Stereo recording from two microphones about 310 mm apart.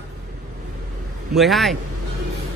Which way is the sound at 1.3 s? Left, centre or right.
Centre.